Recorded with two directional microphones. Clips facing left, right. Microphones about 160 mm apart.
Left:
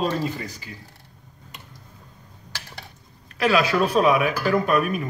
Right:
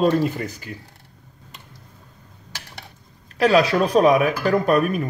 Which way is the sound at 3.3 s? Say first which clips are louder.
Right 3 dB; 35° right (ahead or behind).